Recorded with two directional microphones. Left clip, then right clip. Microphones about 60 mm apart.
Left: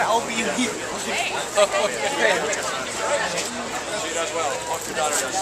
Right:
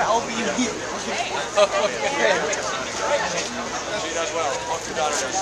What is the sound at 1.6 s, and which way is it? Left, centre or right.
Speech, centre.